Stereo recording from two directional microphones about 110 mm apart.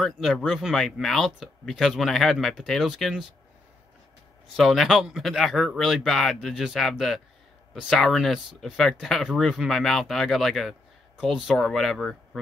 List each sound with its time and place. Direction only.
0.0 s speech: centre (ahead or behind)
4.6 s speech: centre (ahead or behind)